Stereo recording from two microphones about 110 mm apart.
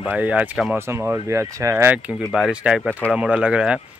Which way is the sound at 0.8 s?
25° right (ahead or behind).